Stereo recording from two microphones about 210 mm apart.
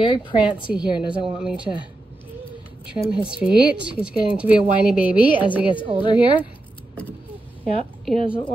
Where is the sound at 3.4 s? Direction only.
5° right (ahead or behind).